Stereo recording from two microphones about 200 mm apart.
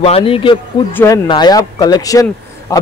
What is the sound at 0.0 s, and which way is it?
A man's voice, 30° left (ahead or behind).